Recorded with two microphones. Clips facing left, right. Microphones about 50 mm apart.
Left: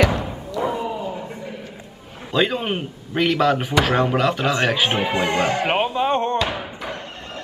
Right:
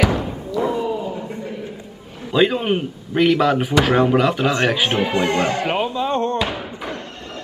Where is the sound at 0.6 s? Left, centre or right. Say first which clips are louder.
Right 3 dB; centre.